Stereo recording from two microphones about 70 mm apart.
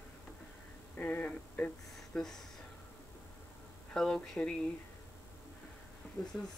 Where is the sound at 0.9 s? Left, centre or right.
Left.